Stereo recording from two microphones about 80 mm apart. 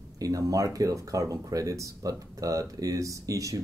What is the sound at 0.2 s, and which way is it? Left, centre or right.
Speech, right.